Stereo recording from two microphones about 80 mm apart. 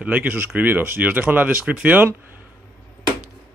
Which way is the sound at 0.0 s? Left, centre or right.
Centre.